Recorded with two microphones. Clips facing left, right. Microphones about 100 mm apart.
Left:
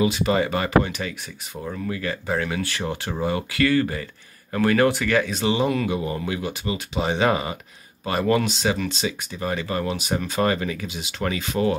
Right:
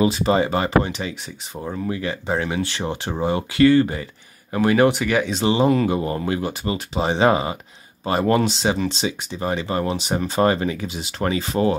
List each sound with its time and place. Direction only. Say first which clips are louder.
0.0 s speech: right 3 dB; 35° right (ahead or behind)
5.3 s speech: right 4 dB; 30° right (ahead or behind)